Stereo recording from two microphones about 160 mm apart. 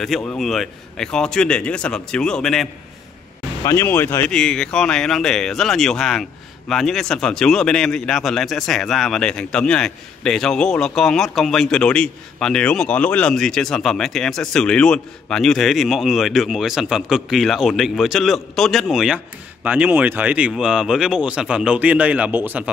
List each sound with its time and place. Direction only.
0.4 s a man's voice: centre (ahead or behind)
3.6 s speech: 15° left (ahead or behind)
4.3 s a man's voice: 5° left (ahead or behind); by 22.7 s 10° right (ahead or behind)